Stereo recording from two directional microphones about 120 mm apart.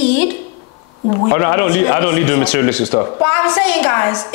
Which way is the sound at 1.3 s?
20° left (ahead or behind).